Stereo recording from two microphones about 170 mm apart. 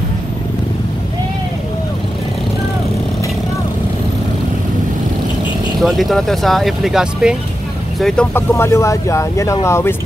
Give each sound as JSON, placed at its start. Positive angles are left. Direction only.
{"t": 5.8, "sound": "speech", "side_deg": 0}
{"t": 8.0, "sound": "speech", "side_deg": 10}